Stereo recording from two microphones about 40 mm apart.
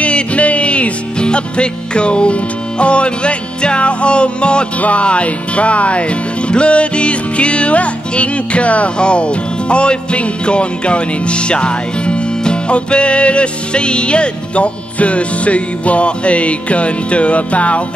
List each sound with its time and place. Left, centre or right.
0.0 s music: left